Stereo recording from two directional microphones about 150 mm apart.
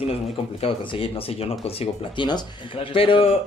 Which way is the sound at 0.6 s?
40° left (ahead or behind).